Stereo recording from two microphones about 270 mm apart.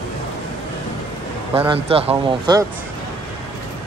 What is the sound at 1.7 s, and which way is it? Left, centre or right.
Speech, right.